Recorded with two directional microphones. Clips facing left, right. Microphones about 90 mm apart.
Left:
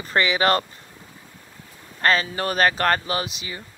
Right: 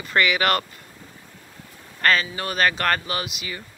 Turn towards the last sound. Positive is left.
turn(degrees=30)  # may be behind; listen again after turning